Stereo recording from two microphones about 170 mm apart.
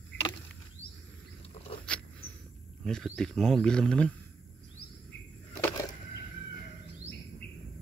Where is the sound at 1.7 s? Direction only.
35° left (ahead or behind).